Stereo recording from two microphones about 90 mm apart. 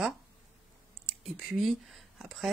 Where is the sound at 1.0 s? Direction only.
Centre (ahead or behind).